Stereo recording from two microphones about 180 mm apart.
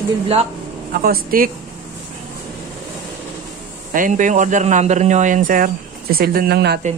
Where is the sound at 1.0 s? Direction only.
55° right (ahead or behind).